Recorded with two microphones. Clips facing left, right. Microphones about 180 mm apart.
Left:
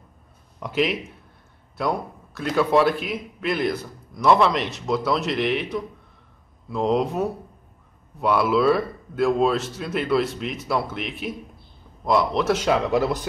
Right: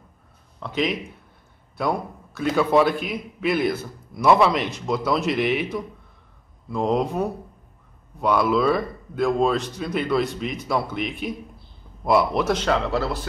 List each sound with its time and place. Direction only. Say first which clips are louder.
0.6 s a man's voice: left 1 dB; 5° left (ahead or behind)
12.5 s speech: left 2 dB; 10° left (ahead or behind)